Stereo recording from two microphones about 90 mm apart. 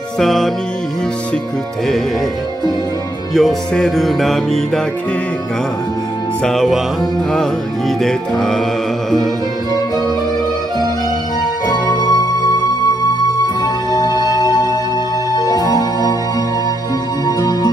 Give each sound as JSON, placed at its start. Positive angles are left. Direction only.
{"t": 0.2, "sound": "music", "side_deg": 5}
{"t": 3.3, "sound": "music", "side_deg": 5}
{"t": 6.4, "sound": "music", "side_deg": 0}
{"t": 8.0, "sound": "music", "side_deg": 5}
{"t": 11.6, "sound": "music", "side_deg": 50}
{"t": 13.6, "sound": "music", "side_deg": 45}